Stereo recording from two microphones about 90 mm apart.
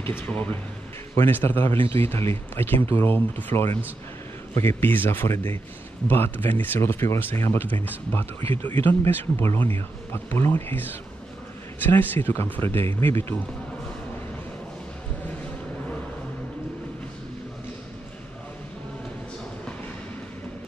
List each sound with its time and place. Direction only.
0.0 s speech: 25° left (ahead or behind)
1.7 s speech: 90° right
2.0 s speech: 25° left (ahead or behind)